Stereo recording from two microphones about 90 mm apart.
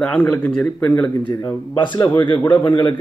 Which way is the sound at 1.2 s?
60° left (ahead or behind).